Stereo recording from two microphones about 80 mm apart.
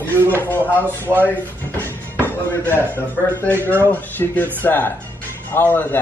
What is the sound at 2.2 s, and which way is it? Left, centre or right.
Speech, left.